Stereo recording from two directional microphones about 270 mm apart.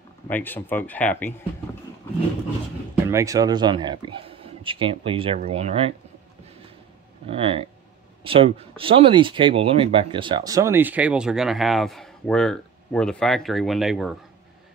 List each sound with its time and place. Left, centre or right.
0.3 s speech: centre
3.1 s speech: centre
7.2 s speech: right; by 14.1 s centre